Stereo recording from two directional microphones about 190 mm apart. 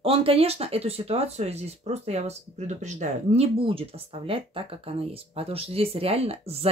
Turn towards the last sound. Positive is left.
turn(degrees=-30)  # may be behind; listen again after turning